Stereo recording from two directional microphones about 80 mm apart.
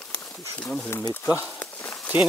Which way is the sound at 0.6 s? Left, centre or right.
Centre.